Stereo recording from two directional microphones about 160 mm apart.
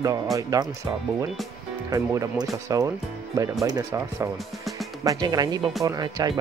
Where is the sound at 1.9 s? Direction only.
20° right (ahead or behind).